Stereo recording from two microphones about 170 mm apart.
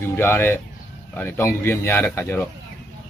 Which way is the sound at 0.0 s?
15° left (ahead or behind).